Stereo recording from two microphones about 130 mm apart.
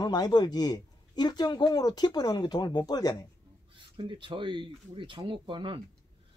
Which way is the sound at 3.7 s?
40° right (ahead or behind).